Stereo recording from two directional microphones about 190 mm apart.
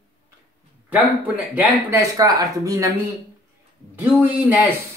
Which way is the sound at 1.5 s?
15° right (ahead or behind).